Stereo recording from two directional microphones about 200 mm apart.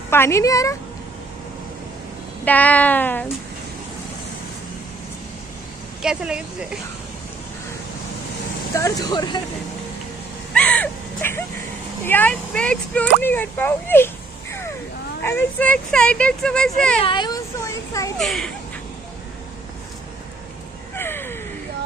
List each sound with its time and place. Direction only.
0.1 s speech: 10° left (ahead or behind)
2.4 s speech: 10° left (ahead or behind)
6.0 s speech: 5° right (ahead or behind)
8.7 s speech: 15° left (ahead or behind)
10.5 s a sound: 5° left (ahead or behind)
12.0 s speech: 10° left (ahead or behind)
13.2 s a sound: 10° left (ahead or behind)
15.2 s speech: 10° left (ahead or behind)
17.0 s speech: 25° left (ahead or behind)
18.1 s speech: centre (ahead or behind)
20.9 s a sound: 10° left (ahead or behind)